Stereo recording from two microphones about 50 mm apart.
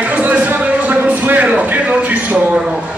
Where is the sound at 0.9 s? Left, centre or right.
Right.